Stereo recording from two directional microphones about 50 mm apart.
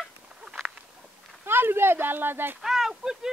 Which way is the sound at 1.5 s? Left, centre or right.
Right.